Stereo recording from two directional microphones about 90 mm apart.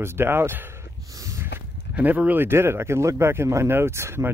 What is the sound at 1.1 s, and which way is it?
Snort, 40° right (ahead or behind).